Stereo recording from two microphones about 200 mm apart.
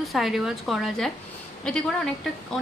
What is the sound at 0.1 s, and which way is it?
A woman's voice, centre (ahead or behind).